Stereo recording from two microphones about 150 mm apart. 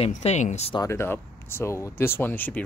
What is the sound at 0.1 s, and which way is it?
Speech, 50° left (ahead or behind).